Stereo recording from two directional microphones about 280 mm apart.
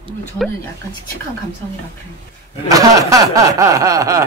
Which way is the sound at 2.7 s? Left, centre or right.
Centre.